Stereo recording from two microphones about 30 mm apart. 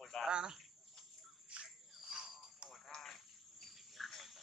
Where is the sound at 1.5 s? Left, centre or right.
Right.